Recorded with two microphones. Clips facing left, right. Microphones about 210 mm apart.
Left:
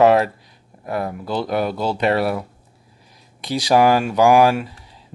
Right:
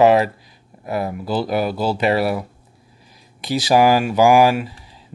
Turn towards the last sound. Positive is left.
turn(degrees=-5)  # may be behind; listen again after turning